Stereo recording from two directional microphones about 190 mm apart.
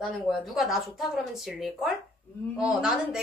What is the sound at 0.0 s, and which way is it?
A woman's voice, centre (ahead or behind).